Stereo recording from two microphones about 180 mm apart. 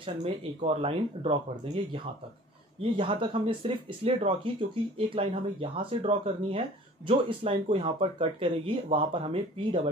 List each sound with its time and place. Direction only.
0.0 s speech: 30° right (ahead or behind)